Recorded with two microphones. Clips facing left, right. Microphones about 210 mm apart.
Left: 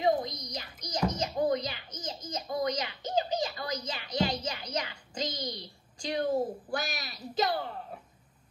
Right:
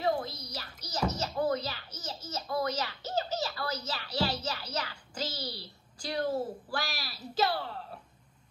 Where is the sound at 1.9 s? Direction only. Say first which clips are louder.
Left 2 dB; 5° right (ahead or behind).